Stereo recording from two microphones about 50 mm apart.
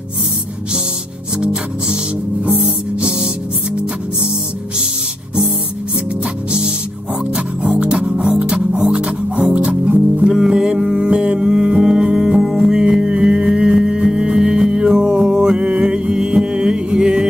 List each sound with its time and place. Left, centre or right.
1.4 s music: centre
7.3 s music: right
9.8 s music: right
10.2 s music: centre